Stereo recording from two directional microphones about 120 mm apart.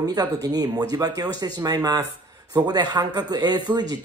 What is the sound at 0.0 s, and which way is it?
A man's voice, 35° right (ahead or behind).